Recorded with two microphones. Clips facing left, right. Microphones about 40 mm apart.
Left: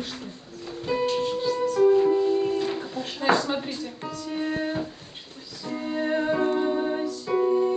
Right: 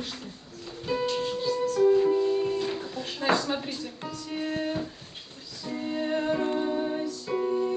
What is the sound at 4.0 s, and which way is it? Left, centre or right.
Music, centre.